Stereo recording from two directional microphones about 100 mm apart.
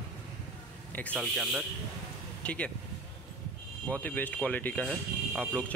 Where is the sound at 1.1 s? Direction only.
10° right (ahead or behind).